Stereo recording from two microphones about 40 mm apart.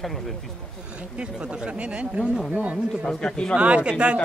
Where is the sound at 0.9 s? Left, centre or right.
Right.